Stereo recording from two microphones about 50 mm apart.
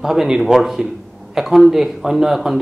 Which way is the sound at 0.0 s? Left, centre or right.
Centre.